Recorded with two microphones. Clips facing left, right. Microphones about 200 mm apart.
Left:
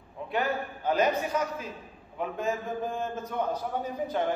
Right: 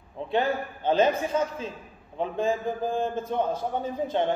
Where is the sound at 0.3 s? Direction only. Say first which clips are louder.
Right 4 dB; 25° right (ahead or behind).